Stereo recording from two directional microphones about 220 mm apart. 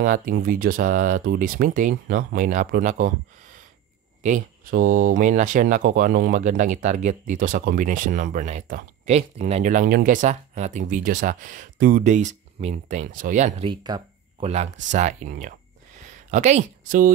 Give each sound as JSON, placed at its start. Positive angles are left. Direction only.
{"t": 0.0, "sound": "speech", "side_deg": -35}